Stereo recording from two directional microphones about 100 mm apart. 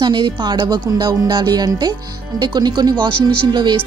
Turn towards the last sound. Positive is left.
turn(degrees=-50)  # may be behind; listen again after turning